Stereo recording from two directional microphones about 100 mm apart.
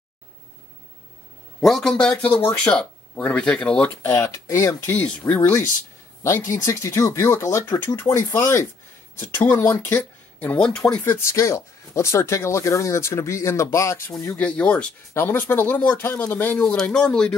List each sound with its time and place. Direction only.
1.6 s speech: 5° left (ahead or behind)
4.1 s speech: 30° left (ahead or behind)
4.8 s speech: 15° left (ahead or behind)
11.1 s speech: 30° left (ahead or behind)
14.2 s speech: 15° left (ahead or behind)
16.6 s speech: 5° left (ahead or behind)